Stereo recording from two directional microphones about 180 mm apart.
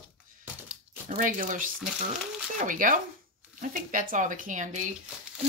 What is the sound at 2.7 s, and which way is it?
Speech, 50° right (ahead or behind).